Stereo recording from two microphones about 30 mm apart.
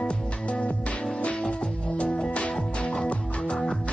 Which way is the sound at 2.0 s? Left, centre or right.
Left.